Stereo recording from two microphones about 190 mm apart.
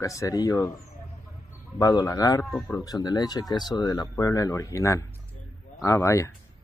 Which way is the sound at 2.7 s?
20° left (ahead or behind).